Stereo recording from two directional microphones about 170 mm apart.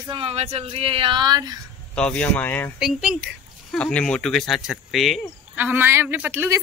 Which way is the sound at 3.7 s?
5° left (ahead or behind).